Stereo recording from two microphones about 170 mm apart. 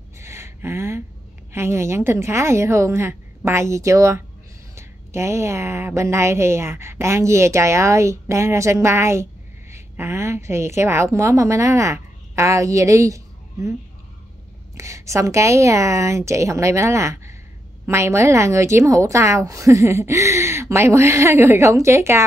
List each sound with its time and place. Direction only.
0.2 s a sound: 15° right (ahead or behind)
1.5 s a woman's voice: 15° right (ahead or behind)
14.8 s a woman's voice: 15° right (ahead or behind)